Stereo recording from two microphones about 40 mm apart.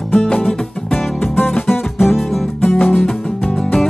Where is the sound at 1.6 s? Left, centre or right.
Centre.